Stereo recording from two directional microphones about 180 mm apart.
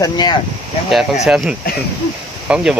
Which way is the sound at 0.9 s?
Centre (ahead or behind).